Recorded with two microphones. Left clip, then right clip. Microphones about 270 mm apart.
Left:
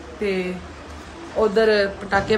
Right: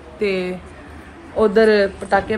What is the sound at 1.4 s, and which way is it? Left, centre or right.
Speech, right.